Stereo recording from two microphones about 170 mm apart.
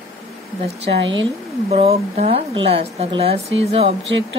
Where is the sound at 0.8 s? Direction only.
90° right.